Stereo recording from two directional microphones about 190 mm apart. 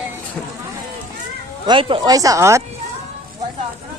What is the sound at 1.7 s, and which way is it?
Speech, 25° right (ahead or behind).